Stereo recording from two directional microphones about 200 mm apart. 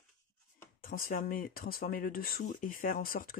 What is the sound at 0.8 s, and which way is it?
Speech, 45° left (ahead or behind).